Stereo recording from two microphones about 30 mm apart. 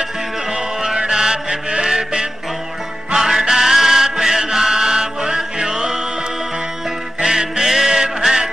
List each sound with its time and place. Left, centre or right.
0.8 s music: right
7.2 s music: centre